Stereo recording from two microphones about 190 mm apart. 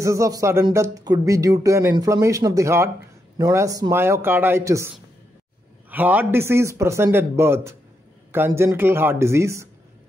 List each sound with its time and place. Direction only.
0.0 s speech: 15° right (ahead or behind)
5.9 s speech: 10° right (ahead or behind)